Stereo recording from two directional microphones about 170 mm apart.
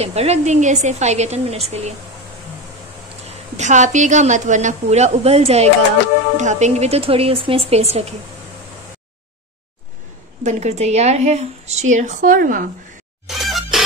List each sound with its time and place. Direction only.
0.0 s a woman's voice: 40° right (ahead or behind)
3.3 s a woman's voice: 45° right (ahead or behind)
10.4 s a woman's voice: 40° right (ahead or behind)
13.5 s music: centre (ahead or behind)